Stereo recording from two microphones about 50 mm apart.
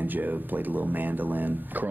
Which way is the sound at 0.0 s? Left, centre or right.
Right.